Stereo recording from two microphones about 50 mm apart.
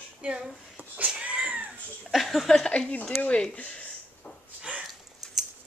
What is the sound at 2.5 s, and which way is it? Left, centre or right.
Speech, centre.